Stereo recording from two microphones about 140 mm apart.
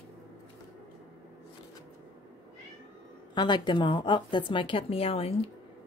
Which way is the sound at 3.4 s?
35° left (ahead or behind).